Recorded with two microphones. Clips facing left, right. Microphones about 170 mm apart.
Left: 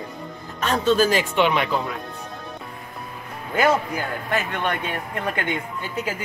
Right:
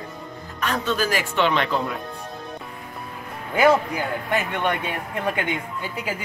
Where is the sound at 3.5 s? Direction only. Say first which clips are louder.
Right 2 dB; 15° right (ahead or behind).